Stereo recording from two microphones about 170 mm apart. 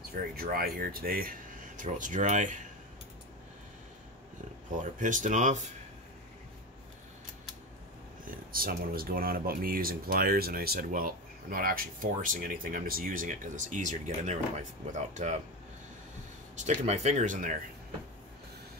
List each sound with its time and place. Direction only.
0.1 s speech: 60° right (ahead or behind)
4.7 s speech: 50° right (ahead or behind)
8.3 s speech: 60° right (ahead or behind); by 15.4 s 45° right (ahead or behind)
16.5 s speech: 45° right (ahead or behind)